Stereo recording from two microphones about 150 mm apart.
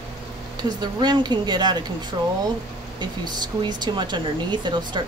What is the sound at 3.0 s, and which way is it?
Speech, 30° right (ahead or behind).